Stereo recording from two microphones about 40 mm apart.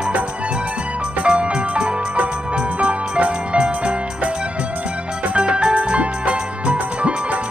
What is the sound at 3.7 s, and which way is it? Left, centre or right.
Music, right.